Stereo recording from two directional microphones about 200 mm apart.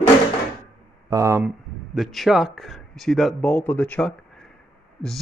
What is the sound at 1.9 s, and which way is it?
Speech, centre (ahead or behind).